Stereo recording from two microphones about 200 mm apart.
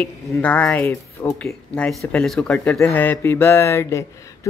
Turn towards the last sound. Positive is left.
turn(degrees=15)  # may be behind; listen again after turning